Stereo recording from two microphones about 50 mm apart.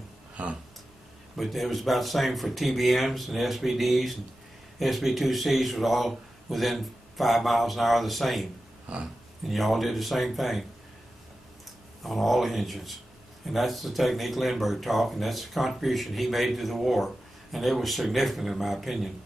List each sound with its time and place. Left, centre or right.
0.4 s a sound: right
1.3 s speech: centre
12.0 s speech: centre